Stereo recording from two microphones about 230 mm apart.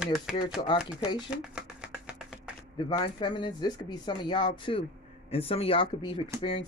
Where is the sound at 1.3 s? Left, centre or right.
Centre.